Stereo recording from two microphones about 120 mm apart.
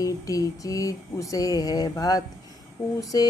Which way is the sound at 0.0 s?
30° left (ahead or behind).